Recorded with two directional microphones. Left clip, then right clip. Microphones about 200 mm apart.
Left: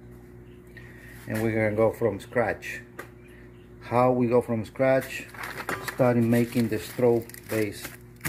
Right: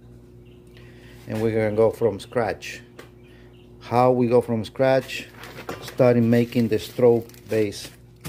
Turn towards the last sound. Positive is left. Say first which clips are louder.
# right 5 dB
turn(degrees=-15)  # may be behind; listen again after turning